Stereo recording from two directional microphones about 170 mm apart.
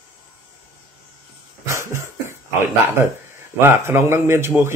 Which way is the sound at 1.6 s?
15° right (ahead or behind).